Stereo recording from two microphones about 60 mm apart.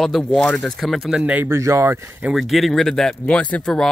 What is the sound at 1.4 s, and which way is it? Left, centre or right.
Speech, right.